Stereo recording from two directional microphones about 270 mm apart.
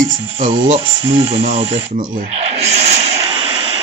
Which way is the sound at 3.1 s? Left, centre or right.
Centre.